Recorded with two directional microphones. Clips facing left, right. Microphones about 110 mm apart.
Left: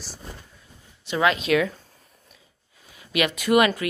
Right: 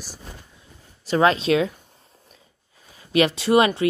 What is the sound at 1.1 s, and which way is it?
Speech, 35° right (ahead or behind).